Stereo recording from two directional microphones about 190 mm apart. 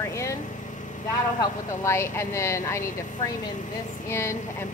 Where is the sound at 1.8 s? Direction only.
15° left (ahead or behind).